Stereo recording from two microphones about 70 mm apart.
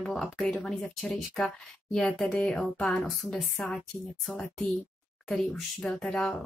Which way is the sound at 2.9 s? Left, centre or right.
Centre.